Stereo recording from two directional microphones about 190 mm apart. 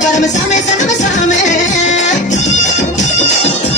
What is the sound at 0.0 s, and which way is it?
Music, 40° left (ahead or behind).